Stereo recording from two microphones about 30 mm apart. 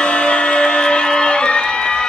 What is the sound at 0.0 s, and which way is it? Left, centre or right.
Music, left.